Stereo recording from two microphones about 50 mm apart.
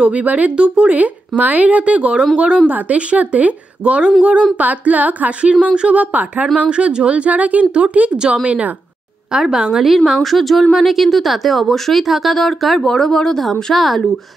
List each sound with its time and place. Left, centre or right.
0.0 s speech: right
4.6 s humming: right
5.8 s speech: right
8.2 s a woman's voice: centre
8.5 s speech: right
9.3 s a woman's voice: centre